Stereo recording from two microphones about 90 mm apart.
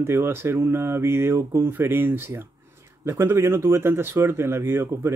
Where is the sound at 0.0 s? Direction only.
30° right (ahead or behind).